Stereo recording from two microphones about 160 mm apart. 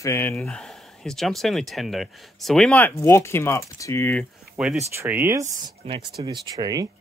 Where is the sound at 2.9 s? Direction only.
15° left (ahead or behind).